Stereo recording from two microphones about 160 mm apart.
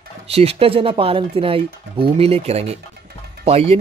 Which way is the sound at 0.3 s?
40° right (ahead or behind).